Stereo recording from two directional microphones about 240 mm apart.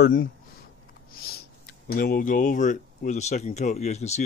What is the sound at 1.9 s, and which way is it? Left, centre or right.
Speech, left.